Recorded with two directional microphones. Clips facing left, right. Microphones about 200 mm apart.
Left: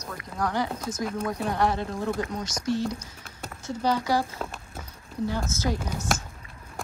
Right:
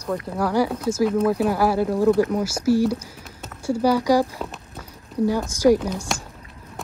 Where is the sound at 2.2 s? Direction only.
70° right (ahead or behind).